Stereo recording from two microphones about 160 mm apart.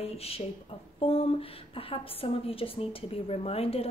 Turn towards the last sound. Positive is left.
turn(degrees=40)  # may be behind; listen again after turning